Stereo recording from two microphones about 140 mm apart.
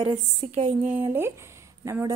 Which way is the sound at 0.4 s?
40° right (ahead or behind).